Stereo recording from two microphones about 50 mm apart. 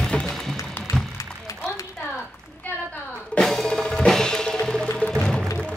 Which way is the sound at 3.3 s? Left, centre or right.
Centre.